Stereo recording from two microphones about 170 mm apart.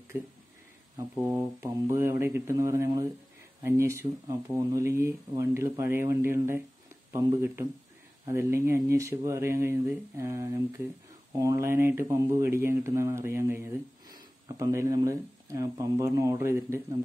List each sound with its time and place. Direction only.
0.1 s speech: 15° right (ahead or behind)
1.3 s speech: 15° right (ahead or behind)